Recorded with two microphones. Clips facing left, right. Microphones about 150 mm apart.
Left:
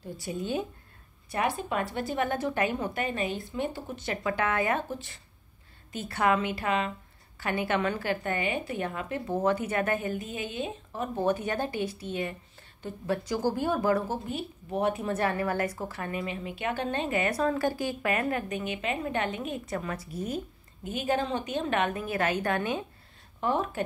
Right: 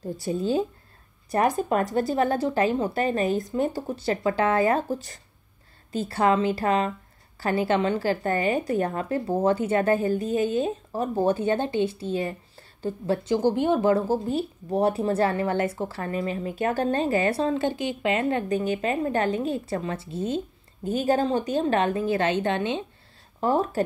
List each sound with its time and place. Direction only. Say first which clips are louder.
0.0 s a woman's voice: right 7 dB; 35° right (ahead or behind)
20.9 s a woman's voice: right 6 dB; 35° right (ahead or behind)
23.4 s a woman's voice: right 5 dB; 35° right (ahead or behind)